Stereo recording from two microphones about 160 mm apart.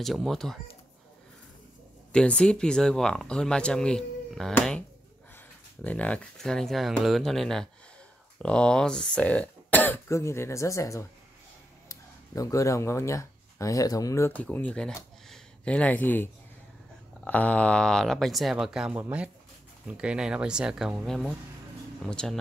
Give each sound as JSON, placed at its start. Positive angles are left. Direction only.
{"t": 0.0, "sound": "speech", "side_deg": 0}
{"t": 2.1, "sound": "speech", "side_deg": 5}
{"t": 5.9, "sound": "speech", "side_deg": 10}
{"t": 15.2, "sound": "a sound", "side_deg": 5}
{"t": 17.2, "sound": "speech", "side_deg": 10}